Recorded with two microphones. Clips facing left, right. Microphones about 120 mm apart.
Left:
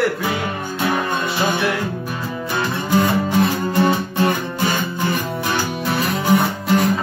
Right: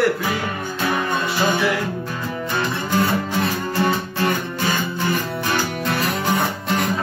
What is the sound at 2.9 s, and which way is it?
Music, 15° left (ahead or behind).